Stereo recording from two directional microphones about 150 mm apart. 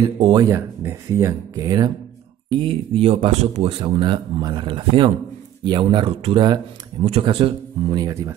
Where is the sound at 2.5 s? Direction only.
35° right (ahead or behind).